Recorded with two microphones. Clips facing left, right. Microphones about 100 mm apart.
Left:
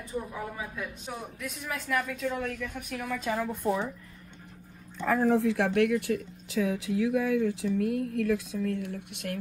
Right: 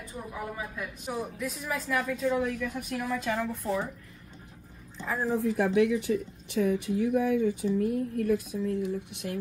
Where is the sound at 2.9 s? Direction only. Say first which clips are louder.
Right 2 dB; 15° right (ahead or behind).